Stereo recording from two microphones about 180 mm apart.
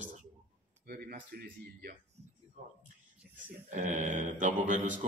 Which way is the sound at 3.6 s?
45° right (ahead or behind).